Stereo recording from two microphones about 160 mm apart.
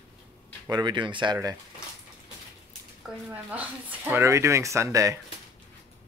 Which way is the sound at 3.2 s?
10° right (ahead or behind).